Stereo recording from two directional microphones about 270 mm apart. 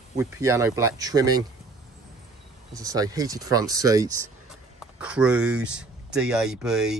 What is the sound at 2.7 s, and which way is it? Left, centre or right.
Speech, centre.